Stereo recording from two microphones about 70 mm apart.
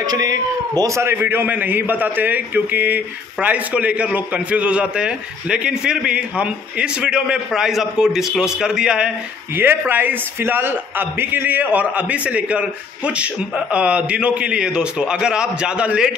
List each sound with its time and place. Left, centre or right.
0.0 s a sound: right
1.1 s a man's voice: right; by 9.1 s centre
9.6 s a man's voice: right